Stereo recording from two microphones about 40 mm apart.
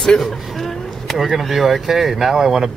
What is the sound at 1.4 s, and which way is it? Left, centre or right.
Speech, centre.